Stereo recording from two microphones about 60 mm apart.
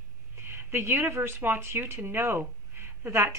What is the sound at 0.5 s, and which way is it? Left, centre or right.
Speech, right.